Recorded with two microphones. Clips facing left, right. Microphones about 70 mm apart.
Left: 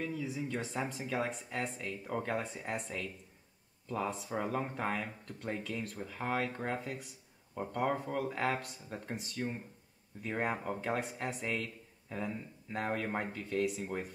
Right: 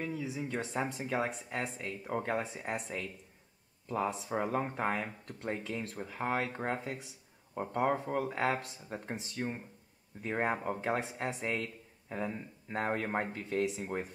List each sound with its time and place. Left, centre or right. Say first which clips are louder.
0.0 s speech: even; centre